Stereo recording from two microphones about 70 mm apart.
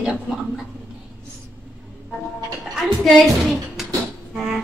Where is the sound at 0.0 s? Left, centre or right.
Centre.